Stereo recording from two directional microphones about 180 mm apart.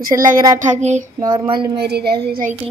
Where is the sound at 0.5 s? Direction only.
40° right (ahead or behind).